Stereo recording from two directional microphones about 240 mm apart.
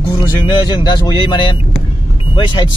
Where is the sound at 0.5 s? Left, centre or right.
Centre.